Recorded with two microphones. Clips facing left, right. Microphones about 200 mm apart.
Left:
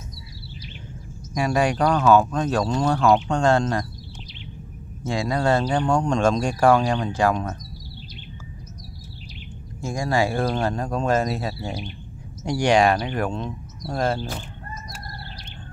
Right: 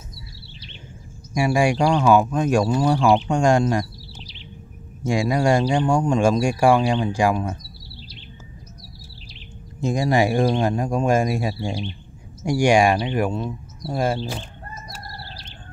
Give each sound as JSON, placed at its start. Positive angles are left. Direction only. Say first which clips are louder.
{"t": 1.3, "sound": "speech", "louder": "right 2 dB", "side_deg": -10}
{"t": 5.0, "sound": "speech", "louder": "right 3 dB", "side_deg": -15}
{"t": 9.8, "sound": "speech", "louder": "right 4 dB", "side_deg": -20}
{"t": 11.6, "sound": "speech", "louder": "right 4 dB", "side_deg": -30}
{"t": 12.4, "sound": "speech", "louder": "right 2 dB", "side_deg": -10}